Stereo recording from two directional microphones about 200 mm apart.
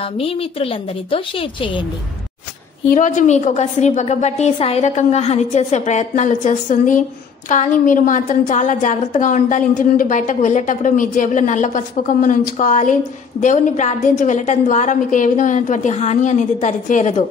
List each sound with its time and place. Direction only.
0.0 s a woman's voice: 30° left (ahead or behind)
2.9 s a woman's voice: 40° left (ahead or behind)